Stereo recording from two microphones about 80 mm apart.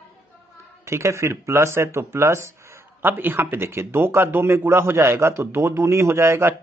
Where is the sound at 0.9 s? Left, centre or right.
Right.